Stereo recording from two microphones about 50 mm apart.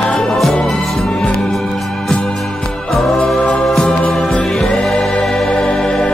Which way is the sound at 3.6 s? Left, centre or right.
Centre.